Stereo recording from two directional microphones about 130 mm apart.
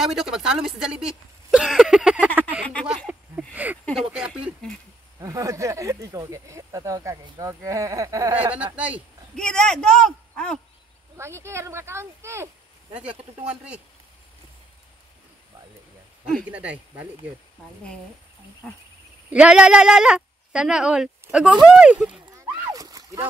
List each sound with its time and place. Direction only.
0.0 s a woman's voice: 5° right (ahead or behind)
2.6 s a sound: 10° left (ahead or behind)
3.1 s a sound: 10° right (ahead or behind)
5.2 s speech: 25° right (ahead or behind)
8.4 s speech: 10° right (ahead or behind)
9.3 s speech: 5° left (ahead or behind)
11.1 s speech: 20° right (ahead or behind)
16.4 s speech: 10° right (ahead or behind)
19.3 s speech: 10° right (ahead or behind)
22.5 s splash: 30° right (ahead or behind)